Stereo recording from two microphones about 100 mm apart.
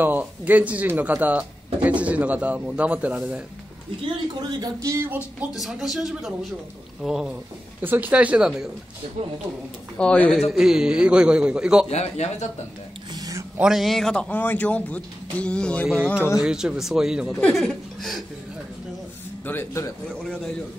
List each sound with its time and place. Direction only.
0.0 s speech: 15° right (ahead or behind)
3.9 s a man's voice: 60° right (ahead or behind)
4.4 s speech: 45° right (ahead or behind)
4.8 s speech: 25° right (ahead or behind)
5.5 s speech: 5° right (ahead or behind)
7.8 s speech: 20° right (ahead or behind)
9.9 s speech: 10° left (ahead or behind)
10.5 s speech: 5° right (ahead or behind)
11.9 s speech: 90° left
13.1 s a sound: 35° right (ahead or behind)
13.6 s speech: 5° right (ahead or behind)
16.3 s speech: 5° right (ahead or behind)
19.4 s speech: 20° left (ahead or behind)
20.1 s speech: 5° left (ahead or behind)